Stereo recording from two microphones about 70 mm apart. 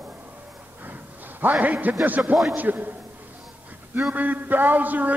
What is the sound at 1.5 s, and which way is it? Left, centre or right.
A man's voice, centre.